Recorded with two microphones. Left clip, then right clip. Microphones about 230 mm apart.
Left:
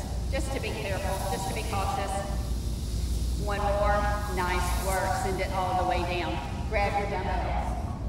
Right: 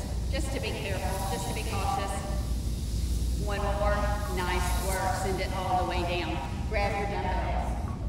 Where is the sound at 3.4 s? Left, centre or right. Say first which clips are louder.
Left 3 dB; centre.